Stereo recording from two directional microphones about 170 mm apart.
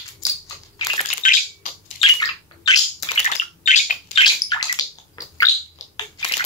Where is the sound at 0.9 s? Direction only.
45° left (ahead or behind).